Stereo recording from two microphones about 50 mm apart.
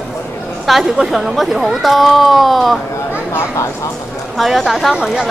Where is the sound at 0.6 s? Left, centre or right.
Centre.